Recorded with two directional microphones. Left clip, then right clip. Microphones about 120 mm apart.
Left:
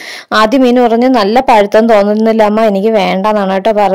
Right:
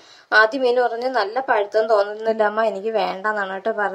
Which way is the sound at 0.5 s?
45° left (ahead or behind).